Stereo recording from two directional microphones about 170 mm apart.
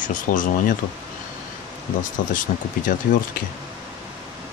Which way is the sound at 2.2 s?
55° left (ahead or behind).